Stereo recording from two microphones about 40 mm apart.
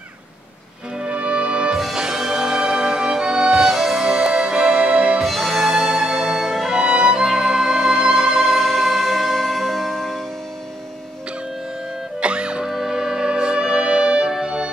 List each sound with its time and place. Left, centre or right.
0.9 s music: right
2.0 s music: centre
5.2 s music: centre
6.7 s music: centre
12.2 s music: right
12.6 s music: centre